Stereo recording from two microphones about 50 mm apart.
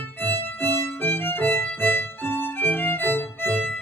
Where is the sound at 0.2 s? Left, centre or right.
Left.